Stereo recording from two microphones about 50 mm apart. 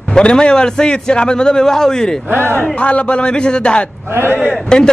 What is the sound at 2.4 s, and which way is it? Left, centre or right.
Speech, left.